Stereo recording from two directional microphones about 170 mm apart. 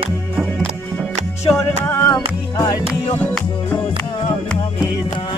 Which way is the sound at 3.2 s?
10° left (ahead or behind).